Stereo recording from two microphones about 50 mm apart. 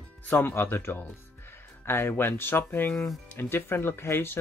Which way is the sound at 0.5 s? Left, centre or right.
Left.